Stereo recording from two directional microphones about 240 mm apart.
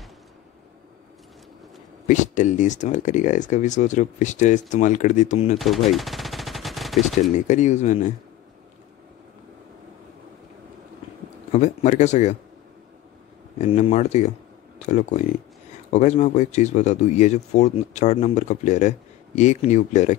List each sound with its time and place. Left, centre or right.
2.0 s speech: left
5.6 s machine gun: centre
7.3 s speech: left
11.5 s speech: left
13.6 s speech: left